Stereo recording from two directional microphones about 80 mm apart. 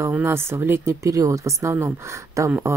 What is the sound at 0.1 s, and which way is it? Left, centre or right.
Speech, right.